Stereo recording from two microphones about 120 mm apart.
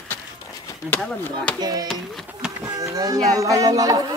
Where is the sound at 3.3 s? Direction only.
25° right (ahead or behind).